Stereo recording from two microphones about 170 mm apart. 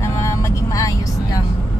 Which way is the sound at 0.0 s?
15° left (ahead or behind).